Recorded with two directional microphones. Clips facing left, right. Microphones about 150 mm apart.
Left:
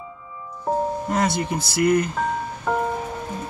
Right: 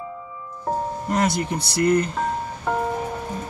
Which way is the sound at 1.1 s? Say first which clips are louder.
Right 2 dB; centre (ahead or behind).